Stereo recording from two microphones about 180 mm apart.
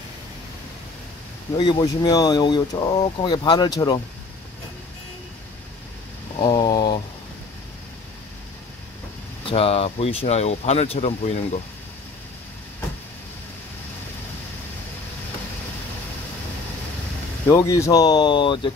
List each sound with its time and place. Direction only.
1.6 s speech: 25° left (ahead or behind)
6.3 s speech: 25° left (ahead or behind)
9.5 s speech: 30° left (ahead or behind)
17.5 s speech: 15° left (ahead or behind)